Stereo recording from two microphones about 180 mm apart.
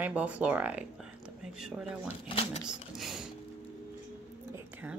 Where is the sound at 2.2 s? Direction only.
30° left (ahead or behind).